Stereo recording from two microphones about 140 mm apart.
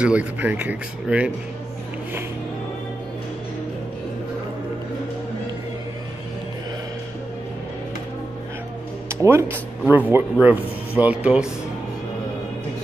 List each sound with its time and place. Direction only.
0.0 s speech: 10° right (ahead or behind)
9.1 s speech: 20° right (ahead or behind)